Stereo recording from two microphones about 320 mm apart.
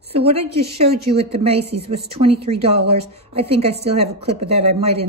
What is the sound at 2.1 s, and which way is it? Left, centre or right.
A woman's voice, centre.